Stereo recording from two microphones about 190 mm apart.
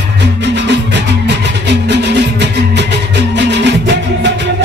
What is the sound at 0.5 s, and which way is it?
Music, 65° right (ahead or behind).